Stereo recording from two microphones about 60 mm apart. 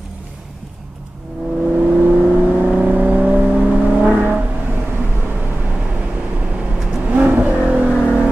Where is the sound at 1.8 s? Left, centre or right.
Right.